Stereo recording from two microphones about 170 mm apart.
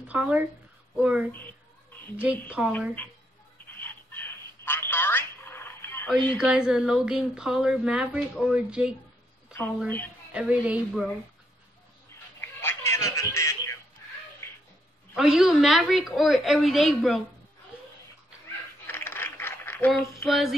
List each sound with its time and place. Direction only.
0.0 s speech: 10° right (ahead or behind)
2.6 s speech: 5° right (ahead or behind)
3.8 s telephone: 10° left (ahead or behind)
6.0 s speech: centre (ahead or behind)
9.5 s speech: 10° left (ahead or behind)
10.3 s speech: 5° right (ahead or behind)
12.4 s a sound: 15° left (ahead or behind)
15.1 s speech: 5° right (ahead or behind)
18.9 s a sound: 15° left (ahead or behind)
20.2 s speech: centre (ahead or behind)